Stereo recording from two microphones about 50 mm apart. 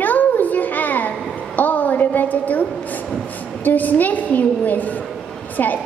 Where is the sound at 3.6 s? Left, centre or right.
Left.